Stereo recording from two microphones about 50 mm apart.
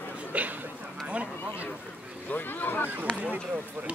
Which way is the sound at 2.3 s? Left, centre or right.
Left.